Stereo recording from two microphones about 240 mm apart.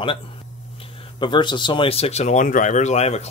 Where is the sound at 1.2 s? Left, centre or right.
Centre.